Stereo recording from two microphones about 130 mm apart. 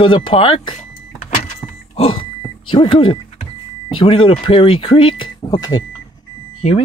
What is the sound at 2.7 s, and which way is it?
Speech, 40° left (ahead or behind).